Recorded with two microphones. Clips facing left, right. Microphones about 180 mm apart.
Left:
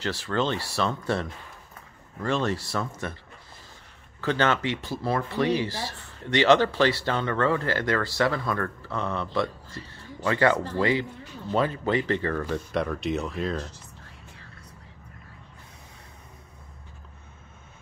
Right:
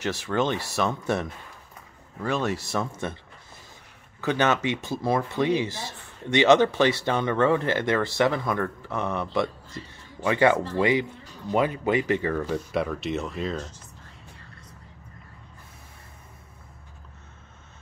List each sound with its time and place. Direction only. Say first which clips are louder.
0.0 s speech: right 1 dB; 20° right (ahead or behind)
4.2 s speech: right 1 dB; 15° right (ahead or behind); by 13.7 s centre (ahead or behind)